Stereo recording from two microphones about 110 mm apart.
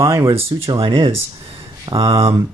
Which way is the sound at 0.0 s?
25° right (ahead or behind).